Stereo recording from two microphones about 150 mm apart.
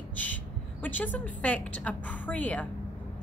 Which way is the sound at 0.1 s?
10° left (ahead or behind).